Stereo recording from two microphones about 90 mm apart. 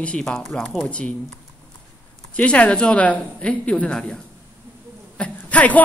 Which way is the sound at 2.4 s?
15° left (ahead or behind).